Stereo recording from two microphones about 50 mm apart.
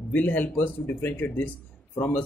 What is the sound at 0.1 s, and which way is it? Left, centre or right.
Speech, left.